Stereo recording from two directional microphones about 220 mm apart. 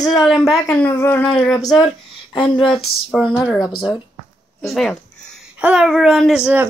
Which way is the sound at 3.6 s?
20° left (ahead or behind).